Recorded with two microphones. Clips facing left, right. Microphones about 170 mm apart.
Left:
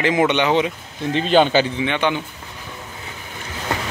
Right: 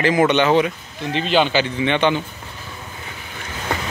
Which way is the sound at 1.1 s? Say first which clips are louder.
Left 3 dB; 40° left (ahead or behind).